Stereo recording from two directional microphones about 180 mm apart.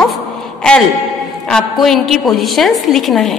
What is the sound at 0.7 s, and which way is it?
A man's voice, 5° left (ahead or behind).